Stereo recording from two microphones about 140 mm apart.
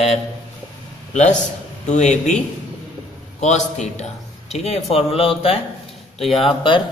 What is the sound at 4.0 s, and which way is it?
Speech, 50° left (ahead or behind).